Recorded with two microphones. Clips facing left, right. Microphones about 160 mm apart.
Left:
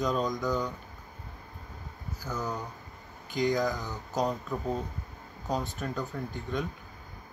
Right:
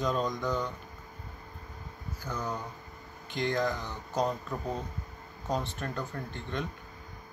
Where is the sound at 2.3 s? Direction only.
Centre (ahead or behind).